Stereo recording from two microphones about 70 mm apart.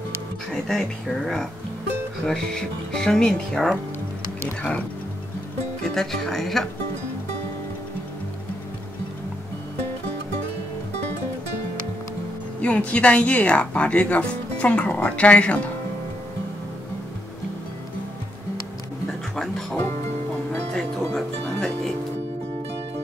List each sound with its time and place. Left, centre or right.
0.5 s speech: centre
4.4 s speech: left
5.9 s speech: centre
12.6 s speech: centre
19.0 s music: centre